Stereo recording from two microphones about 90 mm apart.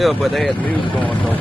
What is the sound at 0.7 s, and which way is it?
Speech, 70° left (ahead or behind).